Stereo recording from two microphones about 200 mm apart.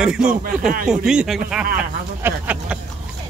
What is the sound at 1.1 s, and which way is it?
Speech, 5° right (ahead or behind).